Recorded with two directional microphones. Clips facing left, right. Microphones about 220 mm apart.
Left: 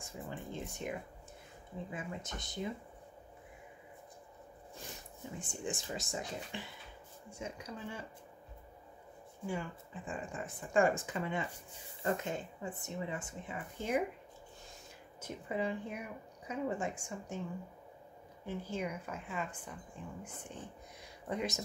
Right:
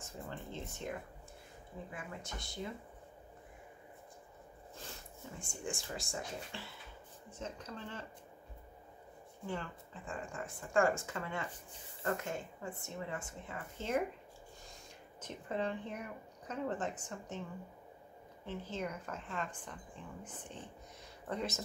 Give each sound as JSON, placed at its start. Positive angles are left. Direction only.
{"t": 0.0, "sound": "speech", "side_deg": 15}
{"t": 5.4, "sound": "speech", "side_deg": 20}
{"t": 9.5, "sound": "speech", "side_deg": 15}
{"t": 15.1, "sound": "speech", "side_deg": 10}
{"t": 18.4, "sound": "speech", "side_deg": 10}
{"t": 21.3, "sound": "speech", "side_deg": 15}